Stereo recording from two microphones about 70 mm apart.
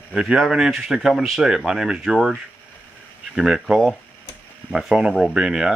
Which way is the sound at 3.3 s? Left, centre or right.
Centre.